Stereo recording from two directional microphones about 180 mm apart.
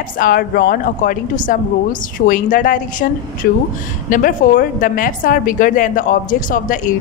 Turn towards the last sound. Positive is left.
turn(degrees=45)  # may be behind; listen again after turning